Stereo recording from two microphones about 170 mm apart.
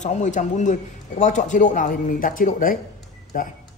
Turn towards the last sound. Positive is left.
turn(degrees=55)  # may be behind; listen again after turning